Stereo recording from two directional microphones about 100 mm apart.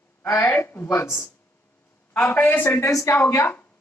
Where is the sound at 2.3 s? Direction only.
20° left (ahead or behind).